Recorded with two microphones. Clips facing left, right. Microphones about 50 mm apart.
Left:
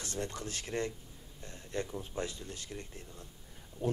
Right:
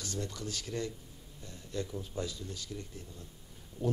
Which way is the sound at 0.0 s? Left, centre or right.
Left.